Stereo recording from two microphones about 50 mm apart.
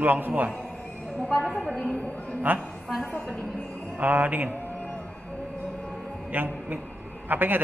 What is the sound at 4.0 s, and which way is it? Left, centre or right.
Speech, right.